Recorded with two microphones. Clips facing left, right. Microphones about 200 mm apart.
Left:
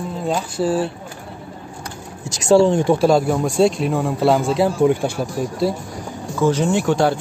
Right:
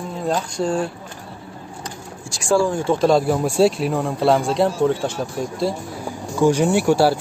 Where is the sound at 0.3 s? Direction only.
5° left (ahead or behind).